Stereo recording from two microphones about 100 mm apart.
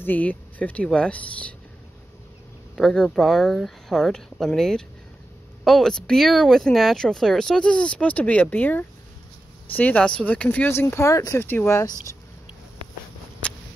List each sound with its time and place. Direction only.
0.0 s speech: 15° left (ahead or behind)
2.7 s speech: 5° left (ahead or behind)
10.7 s speech: 25° left (ahead or behind)